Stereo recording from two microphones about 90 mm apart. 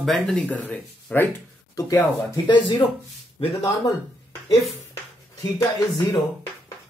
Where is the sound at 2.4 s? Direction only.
65° left (ahead or behind).